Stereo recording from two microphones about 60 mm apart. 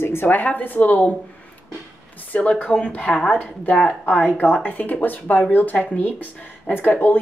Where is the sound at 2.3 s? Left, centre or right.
Left.